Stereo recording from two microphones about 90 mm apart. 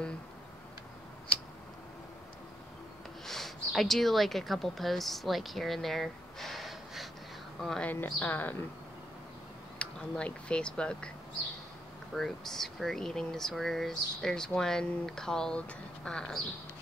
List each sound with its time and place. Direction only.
3.3 s speech: centre (ahead or behind)
7.8 s a woman's voice: 20° left (ahead or behind)
9.8 s speech: 10° left (ahead or behind)
12.1 s speech: centre (ahead or behind)